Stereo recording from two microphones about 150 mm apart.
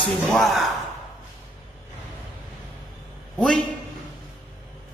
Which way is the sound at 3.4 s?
5° left (ahead or behind).